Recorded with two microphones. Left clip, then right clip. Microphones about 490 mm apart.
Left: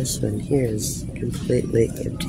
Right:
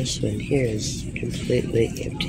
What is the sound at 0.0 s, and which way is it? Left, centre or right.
Speech, left.